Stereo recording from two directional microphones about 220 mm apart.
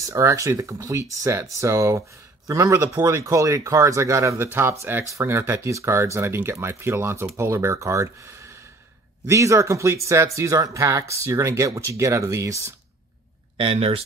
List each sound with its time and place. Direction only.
0.0 s speech: 15° right (ahead or behind)
13.6 s speech: 25° right (ahead or behind)